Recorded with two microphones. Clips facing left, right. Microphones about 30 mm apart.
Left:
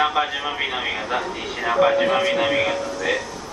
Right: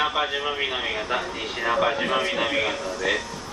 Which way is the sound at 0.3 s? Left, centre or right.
Centre.